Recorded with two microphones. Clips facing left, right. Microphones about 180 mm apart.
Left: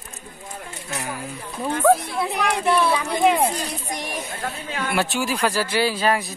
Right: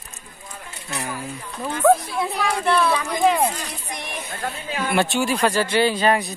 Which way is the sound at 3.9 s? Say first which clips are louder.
Left 3 dB; 40° left (ahead or behind).